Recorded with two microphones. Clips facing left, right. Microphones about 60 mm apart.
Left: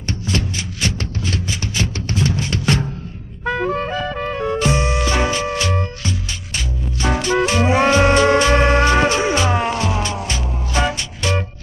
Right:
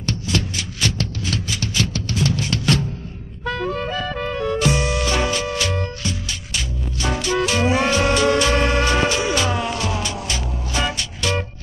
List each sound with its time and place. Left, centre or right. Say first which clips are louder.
0.0 s music: left 1 dB; left